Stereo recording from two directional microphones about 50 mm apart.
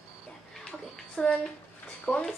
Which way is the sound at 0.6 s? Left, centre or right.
Centre.